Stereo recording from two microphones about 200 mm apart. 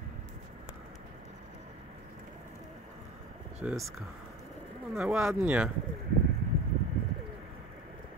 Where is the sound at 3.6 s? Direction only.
5° right (ahead or behind).